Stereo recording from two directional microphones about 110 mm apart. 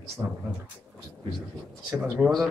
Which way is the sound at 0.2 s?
30° right (ahead or behind).